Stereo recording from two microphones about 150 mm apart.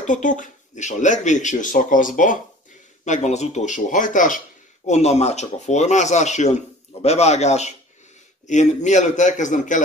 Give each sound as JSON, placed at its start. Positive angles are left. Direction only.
{"t": 0.0, "sound": "speech", "side_deg": 60}
{"t": 3.1, "sound": "speech", "side_deg": 50}
{"t": 4.8, "sound": "speech", "side_deg": 50}